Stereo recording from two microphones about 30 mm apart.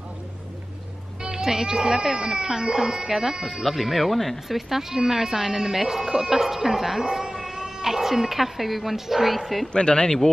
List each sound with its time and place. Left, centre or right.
1.4 s speech: centre
3.6 s speech: centre
9.4 s speech: centre
9.7 s speech: left